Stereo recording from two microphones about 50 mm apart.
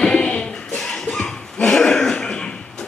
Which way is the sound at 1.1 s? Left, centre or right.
Centre.